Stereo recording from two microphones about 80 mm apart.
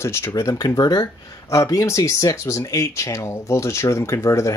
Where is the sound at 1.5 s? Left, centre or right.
Left.